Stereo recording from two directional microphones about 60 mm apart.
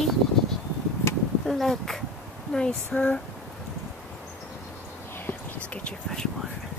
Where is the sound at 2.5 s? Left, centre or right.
Centre.